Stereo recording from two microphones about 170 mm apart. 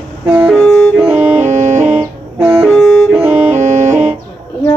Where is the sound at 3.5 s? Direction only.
40° right (ahead or behind).